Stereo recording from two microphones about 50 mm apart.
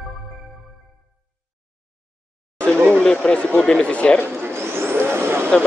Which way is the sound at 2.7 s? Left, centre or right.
Right.